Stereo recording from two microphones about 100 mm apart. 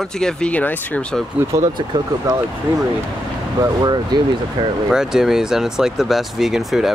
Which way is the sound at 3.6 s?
45° right (ahead or behind).